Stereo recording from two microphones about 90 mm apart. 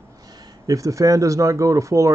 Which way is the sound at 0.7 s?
40° right (ahead or behind).